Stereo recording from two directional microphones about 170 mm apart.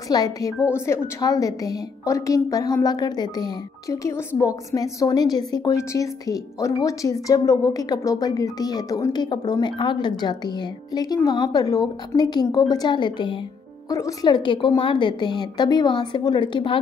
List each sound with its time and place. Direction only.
0.1 s a woman's voice: 20° left (ahead or behind)